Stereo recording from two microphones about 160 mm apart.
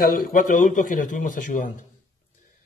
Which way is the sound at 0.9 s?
60° left (ahead or behind).